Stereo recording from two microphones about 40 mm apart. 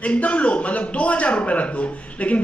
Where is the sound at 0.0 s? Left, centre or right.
Left.